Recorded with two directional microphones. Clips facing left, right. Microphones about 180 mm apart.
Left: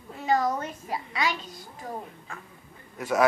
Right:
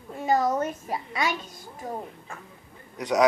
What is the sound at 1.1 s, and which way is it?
Speech, 45° right (ahead or behind).